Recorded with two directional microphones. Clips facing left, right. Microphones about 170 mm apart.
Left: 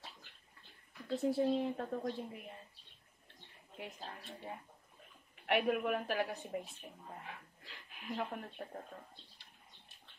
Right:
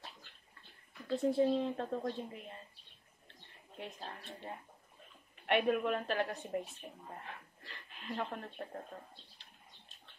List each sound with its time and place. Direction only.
1.0 s a sound: centre (ahead or behind)
1.5 s a woman's voice: 5° left (ahead or behind)
3.7 s speech: 5° left (ahead or behind)
5.7 s a woman's voice: 10° left (ahead or behind)
6.8 s speech: 15° right (ahead or behind)
7.2 s a sound: 5° left (ahead or behind)